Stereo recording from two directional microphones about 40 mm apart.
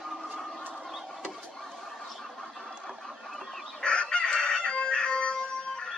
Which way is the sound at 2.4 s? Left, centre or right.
Centre.